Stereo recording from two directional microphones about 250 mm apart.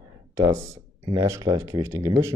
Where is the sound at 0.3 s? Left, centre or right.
Centre.